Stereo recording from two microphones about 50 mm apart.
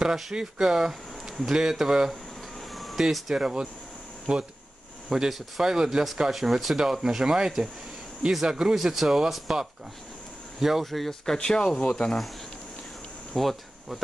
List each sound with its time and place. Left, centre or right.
0.0 s speech: centre
5.1 s speech: centre
11.3 s speech: centre
13.3 s insect: centre